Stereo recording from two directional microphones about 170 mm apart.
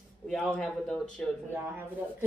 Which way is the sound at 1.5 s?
10° right (ahead or behind).